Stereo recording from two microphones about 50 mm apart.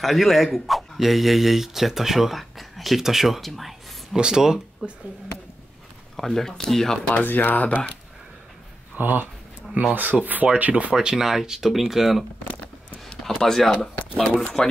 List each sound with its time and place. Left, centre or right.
0.0 s speech: centre
4.2 s speech: centre
6.1 s speech: centre
7.2 s speech: left
8.9 s speech: right; by 12.3 s centre
13.4 s speech: centre